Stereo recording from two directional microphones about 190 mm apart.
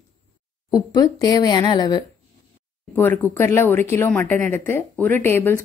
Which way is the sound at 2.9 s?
10° left (ahead or behind).